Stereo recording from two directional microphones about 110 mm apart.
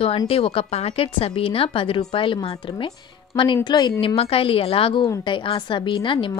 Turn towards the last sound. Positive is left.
turn(degrees=50)  # may be behind; listen again after turning